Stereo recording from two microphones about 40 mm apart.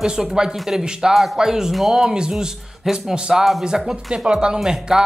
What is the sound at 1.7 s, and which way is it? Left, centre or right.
Speech, centre.